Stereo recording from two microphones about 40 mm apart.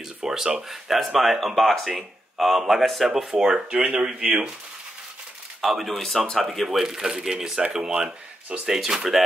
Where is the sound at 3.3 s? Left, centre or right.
Centre.